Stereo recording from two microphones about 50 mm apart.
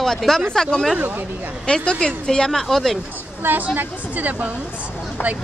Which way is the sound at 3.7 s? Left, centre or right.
Right.